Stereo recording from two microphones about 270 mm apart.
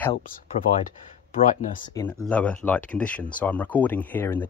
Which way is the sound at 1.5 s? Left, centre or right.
Left.